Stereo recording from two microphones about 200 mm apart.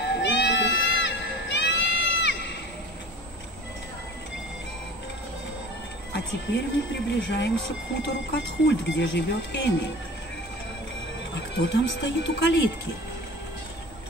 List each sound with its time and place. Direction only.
0.0 s crowd: 60° left (ahead or behind)
6.1 s speech: 60° left (ahead or behind)
11.3 s speech: 60° left (ahead or behind)